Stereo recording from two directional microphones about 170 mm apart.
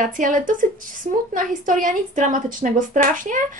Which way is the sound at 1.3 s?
50° right (ahead or behind).